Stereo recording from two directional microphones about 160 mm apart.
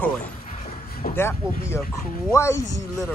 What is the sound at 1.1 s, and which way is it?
Speech, 15° left (ahead or behind).